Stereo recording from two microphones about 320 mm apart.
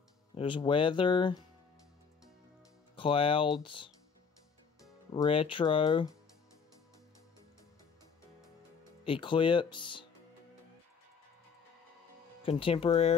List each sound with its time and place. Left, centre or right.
0.3 s speech: centre
3.0 s speech: centre
5.1 s speech: centre
9.0 s speech: centre
12.4 s speech: centre